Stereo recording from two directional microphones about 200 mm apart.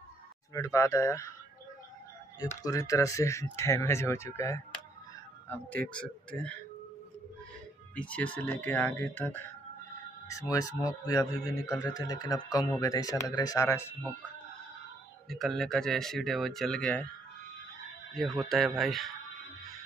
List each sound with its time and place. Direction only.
0.5 s speech: 15° left (ahead or behind)
2.6 s speech: 15° left (ahead or behind)
7.9 s speech: 5° left (ahead or behind)
15.2 s speech: centre (ahead or behind)
18.1 s speech: centre (ahead or behind)